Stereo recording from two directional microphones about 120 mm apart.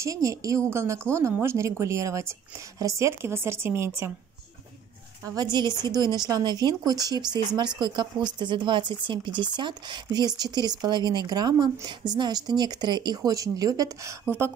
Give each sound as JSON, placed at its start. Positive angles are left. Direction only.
{"t": 0.0, "sound": "a woman's voice", "side_deg": -30}
{"t": 5.2, "sound": "speech", "side_deg": -30}